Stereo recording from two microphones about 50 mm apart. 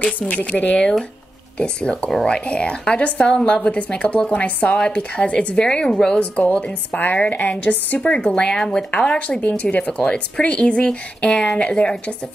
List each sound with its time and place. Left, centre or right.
0.3 s a woman's voice: left
5.6 s a woman's voice: centre
6.1 s a woman's voice: left
8.3 s a woman's voice: centre